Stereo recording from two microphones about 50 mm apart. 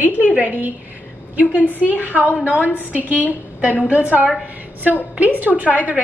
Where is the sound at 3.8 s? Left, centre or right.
Right.